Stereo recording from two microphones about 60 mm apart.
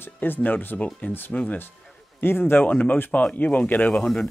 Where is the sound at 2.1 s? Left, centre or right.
Left.